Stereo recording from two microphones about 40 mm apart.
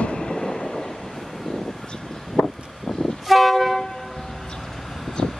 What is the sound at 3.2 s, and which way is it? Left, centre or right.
Vehicle, centre.